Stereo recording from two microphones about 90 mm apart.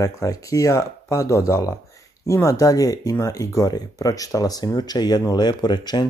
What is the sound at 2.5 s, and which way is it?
Speech, 40° left (ahead or behind).